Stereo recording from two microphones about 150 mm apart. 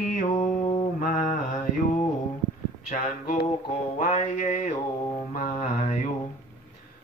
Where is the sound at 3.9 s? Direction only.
55° left (ahead or behind).